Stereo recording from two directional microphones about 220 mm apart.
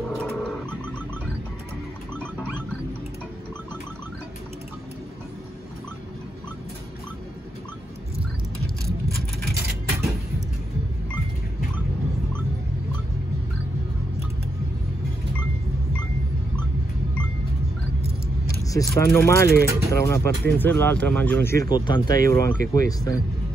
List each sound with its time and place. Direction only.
0.0 s a sound: 5° left (ahead or behind)
2.1 s pig: 5° left (ahead or behind)
18.5 s speech: 15° left (ahead or behind)